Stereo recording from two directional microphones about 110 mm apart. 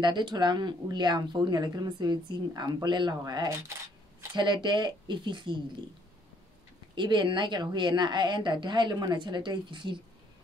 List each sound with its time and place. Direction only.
0.0 s a woman's voice: 45° right (ahead or behind)
7.0 s a woman's voice: 45° right (ahead or behind)